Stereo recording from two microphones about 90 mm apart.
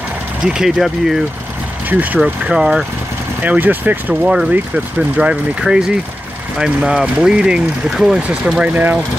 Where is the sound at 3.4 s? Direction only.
20° right (ahead or behind).